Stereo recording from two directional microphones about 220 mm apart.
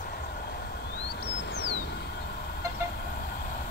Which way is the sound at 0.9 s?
50° left (ahead or behind).